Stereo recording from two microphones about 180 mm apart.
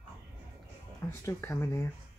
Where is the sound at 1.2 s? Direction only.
15° left (ahead or behind).